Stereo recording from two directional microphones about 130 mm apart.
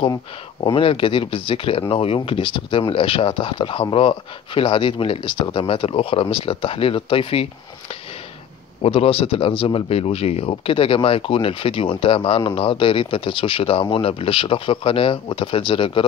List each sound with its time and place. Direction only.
0.7 s speech: 40° left (ahead or behind)
8.8 s speech: 45° left (ahead or behind)